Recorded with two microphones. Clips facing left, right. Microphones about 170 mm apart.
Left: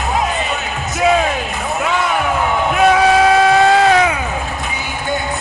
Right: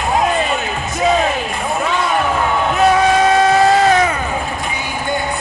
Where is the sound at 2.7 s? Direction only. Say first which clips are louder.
Left 1 dB; 5° left (ahead or behind).